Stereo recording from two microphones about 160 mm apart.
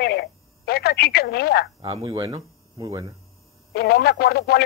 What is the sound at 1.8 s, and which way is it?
Speech, 35° right (ahead or behind).